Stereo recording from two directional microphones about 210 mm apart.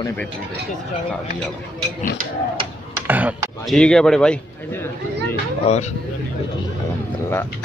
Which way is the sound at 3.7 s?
5° left (ahead or behind).